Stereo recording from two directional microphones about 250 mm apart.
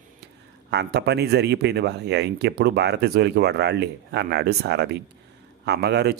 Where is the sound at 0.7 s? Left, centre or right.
Right.